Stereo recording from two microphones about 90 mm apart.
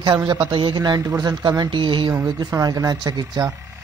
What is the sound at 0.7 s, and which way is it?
Speech, 45° right (ahead or behind).